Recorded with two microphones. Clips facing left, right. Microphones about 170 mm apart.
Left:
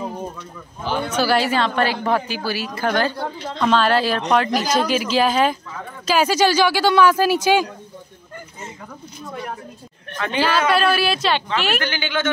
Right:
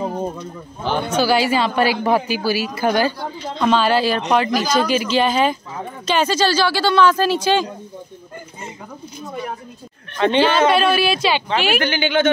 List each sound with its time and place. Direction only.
0.8 s speech: centre (ahead or behind)
10.1 s a woman's voice: 25° right (ahead or behind)
10.7 s speech: centre (ahead or behind)
11.8 s speech: 15° right (ahead or behind)